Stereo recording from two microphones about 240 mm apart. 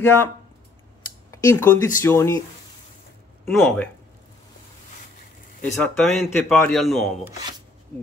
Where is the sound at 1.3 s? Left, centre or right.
Centre.